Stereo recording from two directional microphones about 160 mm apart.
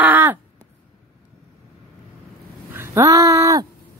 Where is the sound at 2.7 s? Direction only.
15° right (ahead or behind).